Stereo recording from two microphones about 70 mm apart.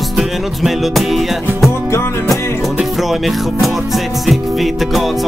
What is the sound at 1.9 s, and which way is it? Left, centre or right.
Music, left.